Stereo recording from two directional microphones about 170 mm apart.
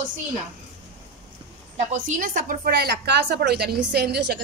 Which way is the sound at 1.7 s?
45° right (ahead or behind).